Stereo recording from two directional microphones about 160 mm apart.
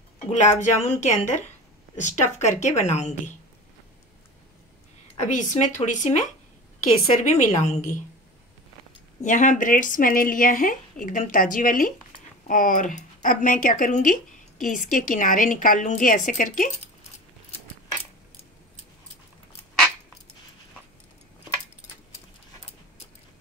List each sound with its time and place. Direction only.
0.3 s a woman's voice: 45° left (ahead or behind)
5.1 s a woman's voice: 50° left (ahead or behind)
7.2 s a woman's voice: 50° left (ahead or behind)
9.2 s a woman's voice: 50° left (ahead or behind)